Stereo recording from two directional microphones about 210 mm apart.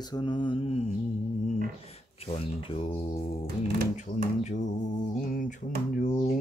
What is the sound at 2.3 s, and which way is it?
Mantra, 30° left (ahead or behind).